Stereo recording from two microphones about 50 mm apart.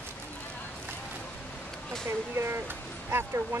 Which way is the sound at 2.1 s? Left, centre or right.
Right.